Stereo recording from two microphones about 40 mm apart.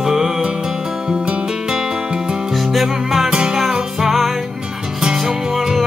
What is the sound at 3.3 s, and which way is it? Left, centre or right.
Music, centre.